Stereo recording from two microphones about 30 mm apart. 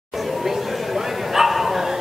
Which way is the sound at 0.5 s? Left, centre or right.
Centre.